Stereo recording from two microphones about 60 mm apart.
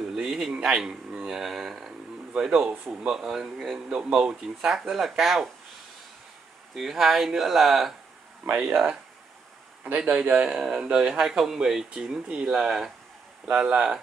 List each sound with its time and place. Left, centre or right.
0.1 s a sound: centre
0.5 s a man's voice: centre
2.6 s a man's voice: right
3.1 s speech: centre
6.7 s speech: centre
9.8 s a man's voice: right; by 12.9 s centre
13.5 s a man's voice: centre